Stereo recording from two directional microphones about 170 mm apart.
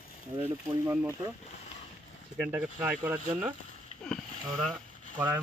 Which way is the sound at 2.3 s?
10° right (ahead or behind).